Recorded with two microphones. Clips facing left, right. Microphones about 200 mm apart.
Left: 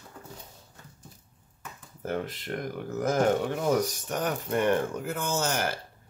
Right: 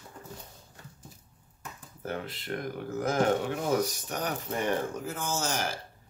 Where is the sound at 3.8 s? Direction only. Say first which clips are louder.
Left 3 dB; 50° left (ahead or behind).